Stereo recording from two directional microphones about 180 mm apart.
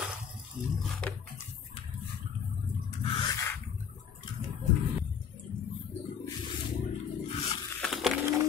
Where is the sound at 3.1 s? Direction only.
25° left (ahead or behind).